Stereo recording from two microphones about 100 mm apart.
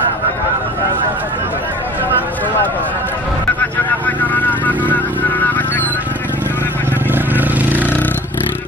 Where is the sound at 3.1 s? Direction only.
15° left (ahead or behind).